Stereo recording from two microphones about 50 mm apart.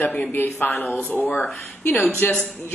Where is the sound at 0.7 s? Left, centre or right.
Centre.